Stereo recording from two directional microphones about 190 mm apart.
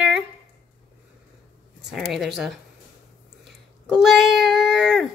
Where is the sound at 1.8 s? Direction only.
Centre (ahead or behind).